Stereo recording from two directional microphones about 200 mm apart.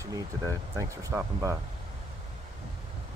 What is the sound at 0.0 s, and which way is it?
Speech, 15° right (ahead or behind).